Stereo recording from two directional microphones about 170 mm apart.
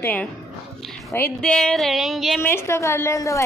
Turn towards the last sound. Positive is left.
turn(degrees=20)  # may be behind; listen again after turning